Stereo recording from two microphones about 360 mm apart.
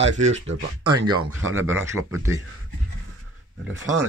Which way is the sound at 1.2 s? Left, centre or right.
Right.